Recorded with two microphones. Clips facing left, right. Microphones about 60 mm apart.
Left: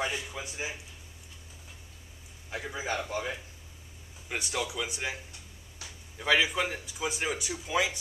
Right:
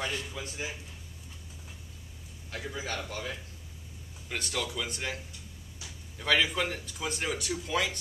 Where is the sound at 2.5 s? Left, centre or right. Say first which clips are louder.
Left 3 dB; centre.